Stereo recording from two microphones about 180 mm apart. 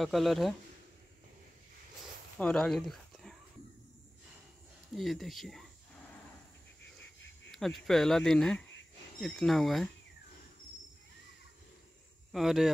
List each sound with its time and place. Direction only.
0.0 s speech: centre (ahead or behind)
2.3 s speech: 5° left (ahead or behind)
4.9 s speech: centre (ahead or behind)
7.5 s speech: centre (ahead or behind)
12.3 s speech: centre (ahead or behind)